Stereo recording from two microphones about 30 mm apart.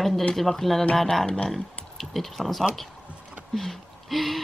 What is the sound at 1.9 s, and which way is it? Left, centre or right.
Speech, centre.